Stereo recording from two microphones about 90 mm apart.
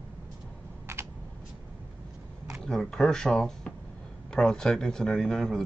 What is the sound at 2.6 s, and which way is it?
Speech, 5° left (ahead or behind).